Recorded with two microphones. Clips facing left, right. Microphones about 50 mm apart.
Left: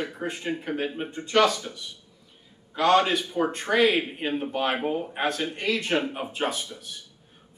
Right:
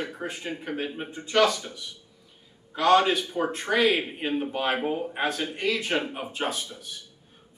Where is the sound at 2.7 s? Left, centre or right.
Centre.